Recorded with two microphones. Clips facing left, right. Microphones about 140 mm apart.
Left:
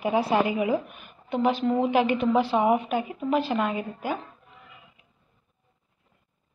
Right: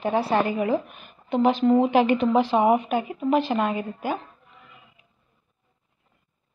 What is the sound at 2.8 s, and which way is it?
Speech, centre (ahead or behind).